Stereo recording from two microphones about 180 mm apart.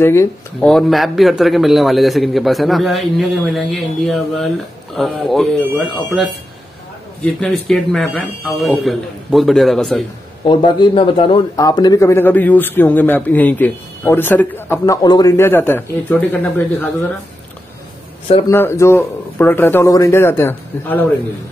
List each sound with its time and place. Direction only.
0.0 s a man's voice: 15° left (ahead or behind)
0.7 s a man's voice: centre (ahead or behind)
7.3 s a man's voice: 5° left (ahead or behind)
10.4 s a man's voice: 25° left (ahead or behind); by 16.9 s 10° left (ahead or behind)
18.5 s a man's voice: 15° left (ahead or behind)